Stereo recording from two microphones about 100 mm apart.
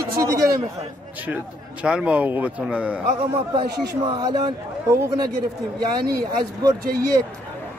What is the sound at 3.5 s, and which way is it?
A man's voice, 45° right (ahead or behind).